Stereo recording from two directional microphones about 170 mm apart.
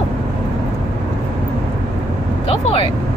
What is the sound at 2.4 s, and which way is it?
Vehicle, 35° left (ahead or behind).